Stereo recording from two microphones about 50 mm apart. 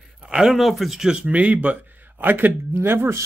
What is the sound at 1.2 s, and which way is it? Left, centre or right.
Speech, right.